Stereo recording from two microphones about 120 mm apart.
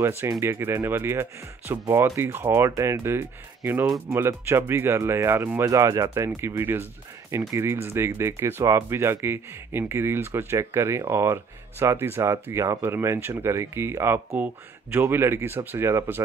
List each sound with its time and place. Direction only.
0.2 s speech: 20° right (ahead or behind)